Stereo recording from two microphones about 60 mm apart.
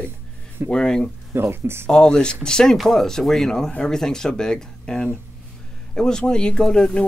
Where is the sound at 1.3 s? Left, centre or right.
Right.